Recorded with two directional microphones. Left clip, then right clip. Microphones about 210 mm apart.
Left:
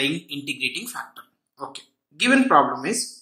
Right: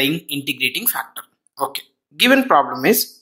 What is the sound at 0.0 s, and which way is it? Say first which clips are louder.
Speech: right 5 dB; 35° right (ahead or behind).